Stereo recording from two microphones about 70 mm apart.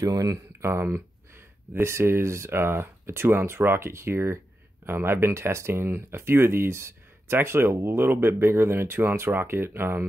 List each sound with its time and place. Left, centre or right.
0.0 s speech: right
0.6 s speech: right